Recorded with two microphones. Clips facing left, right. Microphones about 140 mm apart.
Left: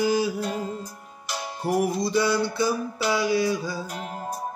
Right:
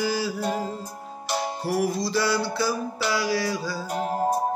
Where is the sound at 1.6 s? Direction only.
20° left (ahead or behind).